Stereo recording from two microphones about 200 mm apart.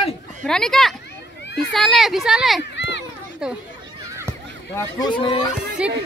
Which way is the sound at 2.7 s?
60° left (ahead or behind).